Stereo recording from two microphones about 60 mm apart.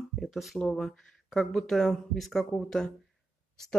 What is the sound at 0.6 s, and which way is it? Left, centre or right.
A woman's voice, centre.